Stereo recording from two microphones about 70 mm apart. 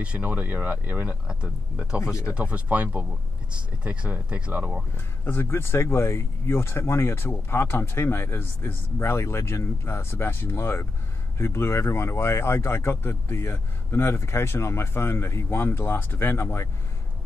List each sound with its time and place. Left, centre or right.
0.0 s speech: centre
1.2 s speech: centre
4.9 s speech: left